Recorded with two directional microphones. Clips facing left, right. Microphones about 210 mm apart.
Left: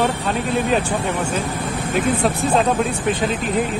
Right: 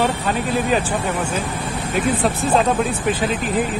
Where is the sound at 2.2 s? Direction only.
Centre (ahead or behind).